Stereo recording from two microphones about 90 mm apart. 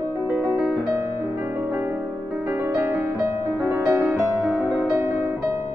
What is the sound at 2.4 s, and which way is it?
Music, 25° right (ahead or behind).